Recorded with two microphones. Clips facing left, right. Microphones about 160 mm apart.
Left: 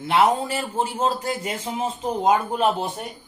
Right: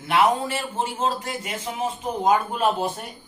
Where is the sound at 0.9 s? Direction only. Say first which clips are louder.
Left 2 dB; 35° left (ahead or behind).